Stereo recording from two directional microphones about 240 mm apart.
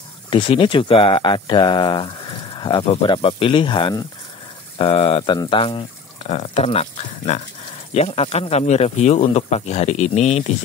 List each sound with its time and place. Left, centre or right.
0.3 s speech: left